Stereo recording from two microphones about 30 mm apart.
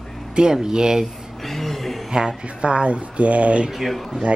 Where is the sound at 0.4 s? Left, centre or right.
Right.